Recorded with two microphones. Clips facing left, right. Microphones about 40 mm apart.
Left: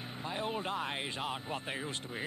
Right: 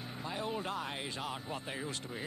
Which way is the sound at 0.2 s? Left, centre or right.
Left.